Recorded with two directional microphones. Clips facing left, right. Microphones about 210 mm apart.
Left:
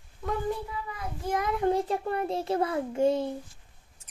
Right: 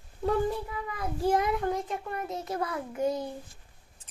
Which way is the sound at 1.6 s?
30° left (ahead or behind).